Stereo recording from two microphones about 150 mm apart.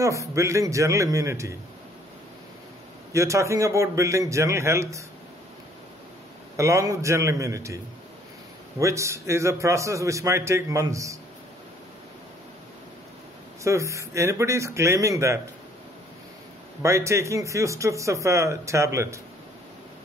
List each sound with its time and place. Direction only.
0.0 s a man's voice: 20° right (ahead or behind)
3.1 s a man's voice: 20° right (ahead or behind)
6.5 s a man's voice: 20° right (ahead or behind)
13.7 s a man's voice: 20° right (ahead or behind)
16.8 s a man's voice: 20° right (ahead or behind)